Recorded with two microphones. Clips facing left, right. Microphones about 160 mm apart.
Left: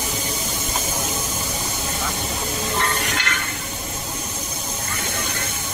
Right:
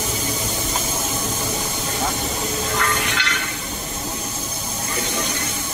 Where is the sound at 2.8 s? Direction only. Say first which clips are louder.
Right 1 dB; 40° left (ahead or behind).